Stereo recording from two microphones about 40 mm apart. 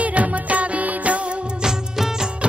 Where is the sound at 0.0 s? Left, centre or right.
Right.